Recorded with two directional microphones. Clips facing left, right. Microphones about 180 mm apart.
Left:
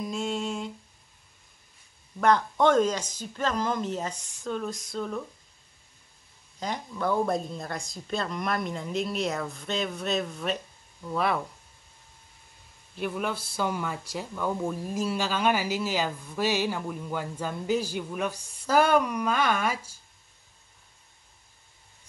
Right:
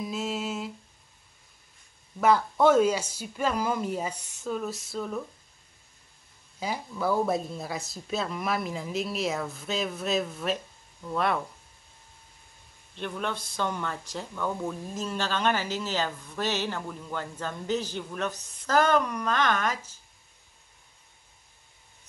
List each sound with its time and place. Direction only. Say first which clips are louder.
0.0 s humming: left 1 dB; 5° right (ahead or behind)
2.1 s speech: even; 5° right (ahead or behind)
6.6 s speech: even; 5° right (ahead or behind)
12.9 s speech: left 2 dB; 5° left (ahead or behind)